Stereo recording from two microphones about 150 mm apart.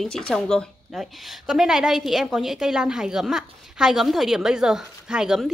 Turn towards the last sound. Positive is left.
turn(degrees=-5)  # may be behind; listen again after turning